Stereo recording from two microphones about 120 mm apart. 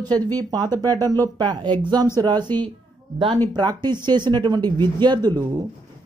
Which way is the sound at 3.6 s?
35° right (ahead or behind).